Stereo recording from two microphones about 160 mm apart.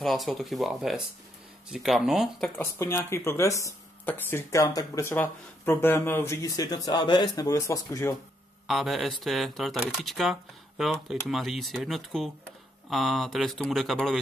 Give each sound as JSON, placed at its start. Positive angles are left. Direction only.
{"t": 0.0, "sound": "speech", "side_deg": 0}
{"t": 2.5, "sound": "speech", "side_deg": 15}
{"t": 8.6, "sound": "speech", "side_deg": 0}